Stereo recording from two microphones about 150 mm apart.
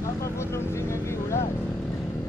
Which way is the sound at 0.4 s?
15° left (ahead or behind).